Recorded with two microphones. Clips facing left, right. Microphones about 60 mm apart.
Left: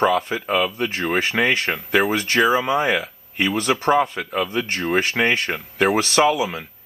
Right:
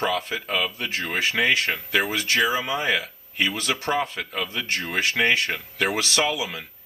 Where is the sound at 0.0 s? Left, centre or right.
Left.